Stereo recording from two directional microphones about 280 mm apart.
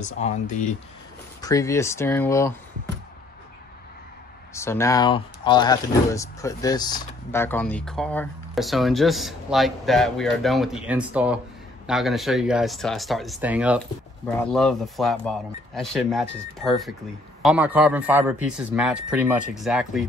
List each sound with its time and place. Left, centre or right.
0.0 s speech: left
1.4 s speech: centre
4.6 s speech: centre